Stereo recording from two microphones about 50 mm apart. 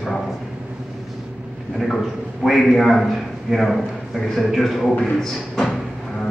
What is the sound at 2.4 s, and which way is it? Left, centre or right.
A man's voice, centre.